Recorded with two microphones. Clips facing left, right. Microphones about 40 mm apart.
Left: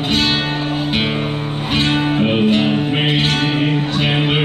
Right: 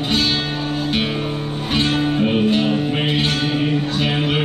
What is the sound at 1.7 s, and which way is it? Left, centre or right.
Music, left.